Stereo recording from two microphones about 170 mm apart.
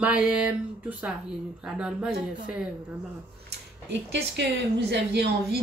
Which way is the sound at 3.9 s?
90° right.